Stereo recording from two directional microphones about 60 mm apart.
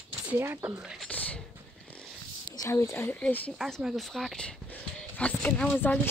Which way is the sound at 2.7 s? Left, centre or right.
Left.